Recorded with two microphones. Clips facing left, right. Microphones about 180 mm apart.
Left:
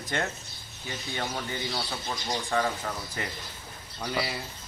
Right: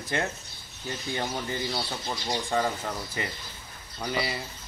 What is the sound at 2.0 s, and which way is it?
Speech, 15° right (ahead or behind).